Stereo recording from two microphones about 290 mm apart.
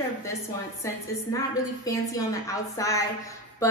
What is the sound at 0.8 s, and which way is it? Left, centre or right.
A woman's voice, centre.